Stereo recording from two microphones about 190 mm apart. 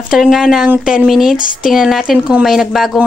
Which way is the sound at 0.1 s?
Centre (ahead or behind).